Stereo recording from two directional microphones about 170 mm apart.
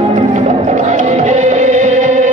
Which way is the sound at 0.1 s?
45° right (ahead or behind).